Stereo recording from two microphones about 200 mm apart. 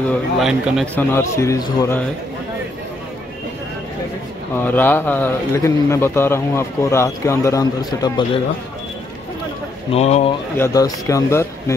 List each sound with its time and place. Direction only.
0.1 s a man's voice: centre (ahead or behind)
0.9 s a man's voice: 15° left (ahead or behind)
4.6 s a man's voice: 10° left (ahead or behind)
9.9 s speech: 35° left (ahead or behind)
10.6 s a man's voice: 15° left (ahead or behind)